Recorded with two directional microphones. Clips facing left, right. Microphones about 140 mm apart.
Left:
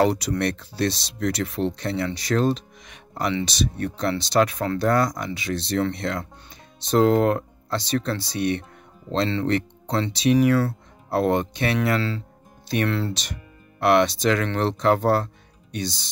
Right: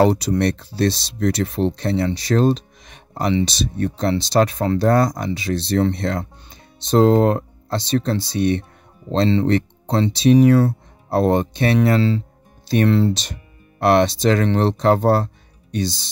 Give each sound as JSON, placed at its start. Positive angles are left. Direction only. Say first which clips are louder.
{"t": 0.0, "sound": "speech", "louder": "right 5 dB", "side_deg": -30}